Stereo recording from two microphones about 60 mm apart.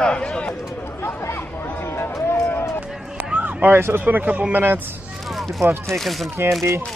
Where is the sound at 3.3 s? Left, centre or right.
Right.